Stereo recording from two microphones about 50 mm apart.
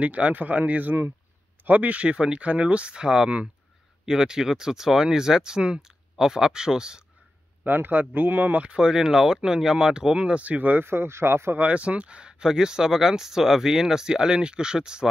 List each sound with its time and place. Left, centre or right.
0.0 s speech: right
7.6 s speech: right
8.6 s speech: centre; by 11.5 s right
11.5 s speech: right